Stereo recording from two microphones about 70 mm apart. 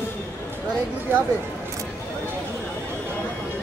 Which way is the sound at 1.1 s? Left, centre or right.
Right.